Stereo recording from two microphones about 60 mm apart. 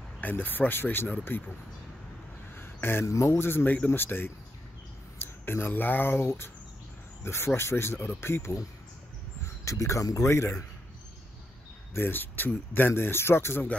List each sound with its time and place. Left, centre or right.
0.2 s speech: left
2.5 s a sound: left
3.1 s speech: left
3.3 s speech: left
9.7 s speech: left
11.9 s speech: left